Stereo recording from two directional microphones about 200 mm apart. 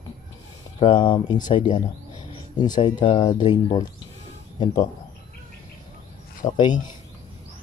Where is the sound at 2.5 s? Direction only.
20° left (ahead or behind).